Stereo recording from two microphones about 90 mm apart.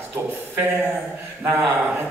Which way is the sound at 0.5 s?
25° right (ahead or behind).